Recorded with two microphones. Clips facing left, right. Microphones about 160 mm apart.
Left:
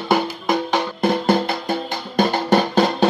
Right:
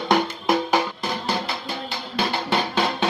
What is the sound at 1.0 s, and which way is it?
Music, 55° left (ahead or behind).